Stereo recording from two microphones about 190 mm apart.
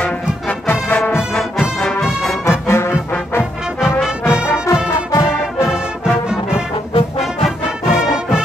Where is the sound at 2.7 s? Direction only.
15° left (ahead or behind).